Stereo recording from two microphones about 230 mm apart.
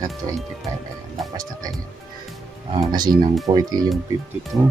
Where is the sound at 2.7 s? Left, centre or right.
Centre.